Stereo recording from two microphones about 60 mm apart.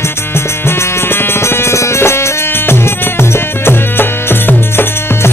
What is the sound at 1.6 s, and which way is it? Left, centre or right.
Music, left.